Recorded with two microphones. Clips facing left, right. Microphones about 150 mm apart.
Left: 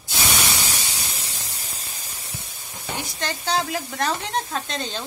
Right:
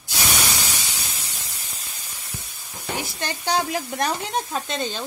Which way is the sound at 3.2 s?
15° right (ahead or behind).